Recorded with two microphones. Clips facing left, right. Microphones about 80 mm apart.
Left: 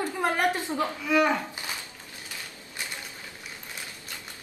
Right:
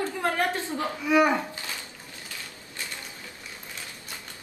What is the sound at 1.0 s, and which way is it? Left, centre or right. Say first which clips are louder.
Speech: right 3 dB; centre.